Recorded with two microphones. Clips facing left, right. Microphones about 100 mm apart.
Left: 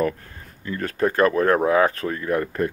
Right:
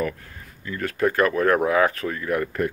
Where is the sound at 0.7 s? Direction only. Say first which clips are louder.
Even; 35° left (ahead or behind).